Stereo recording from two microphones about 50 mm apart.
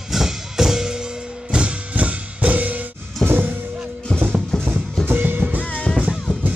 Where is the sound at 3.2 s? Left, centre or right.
Right.